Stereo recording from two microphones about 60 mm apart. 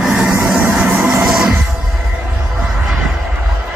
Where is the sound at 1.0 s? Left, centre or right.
Right.